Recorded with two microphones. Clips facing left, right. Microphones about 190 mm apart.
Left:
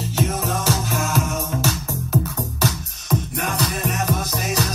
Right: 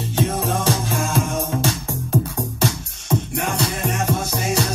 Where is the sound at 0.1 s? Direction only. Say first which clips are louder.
Right 2 dB; 30° right (ahead or behind).